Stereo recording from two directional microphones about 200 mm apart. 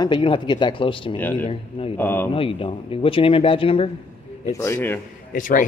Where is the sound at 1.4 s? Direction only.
30° left (ahead or behind).